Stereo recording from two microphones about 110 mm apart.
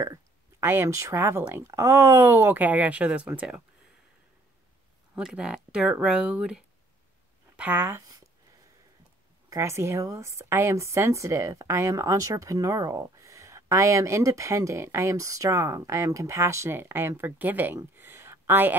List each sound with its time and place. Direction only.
0.0 s speech: 25° right (ahead or behind)
5.1 s speech: 5° right (ahead or behind)
9.5 s a woman's voice: 25° right (ahead or behind)
17.9 s a sound: 20° right (ahead or behind)